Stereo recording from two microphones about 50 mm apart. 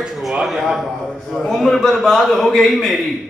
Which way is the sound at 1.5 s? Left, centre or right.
Centre.